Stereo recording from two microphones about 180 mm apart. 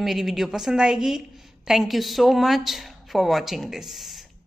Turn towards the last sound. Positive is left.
turn(degrees=0)  # may be behind; listen again after turning